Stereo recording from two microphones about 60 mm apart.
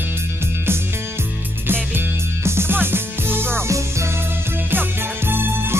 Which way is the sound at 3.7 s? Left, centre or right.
Right.